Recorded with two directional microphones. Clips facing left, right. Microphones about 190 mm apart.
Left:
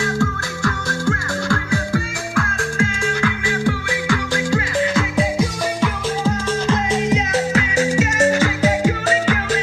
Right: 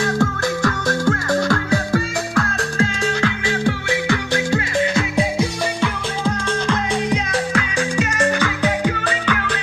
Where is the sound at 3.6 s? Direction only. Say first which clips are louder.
Right 1 dB; 20° right (ahead or behind).